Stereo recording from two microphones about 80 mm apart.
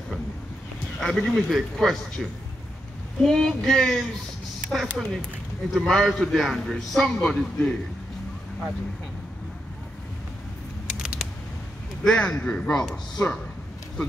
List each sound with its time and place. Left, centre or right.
1.0 s speech: centre
3.3 s speech: centre
10.9 s a sound: centre
12.0 s speech: centre
13.2 s a man's voice: left